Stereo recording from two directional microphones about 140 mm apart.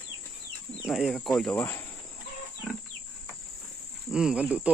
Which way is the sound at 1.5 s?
15° left (ahead or behind).